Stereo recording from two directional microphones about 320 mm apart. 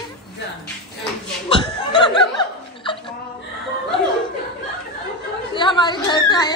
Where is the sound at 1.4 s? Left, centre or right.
Centre.